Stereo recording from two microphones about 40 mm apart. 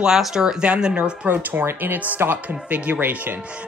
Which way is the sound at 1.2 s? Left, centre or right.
Right.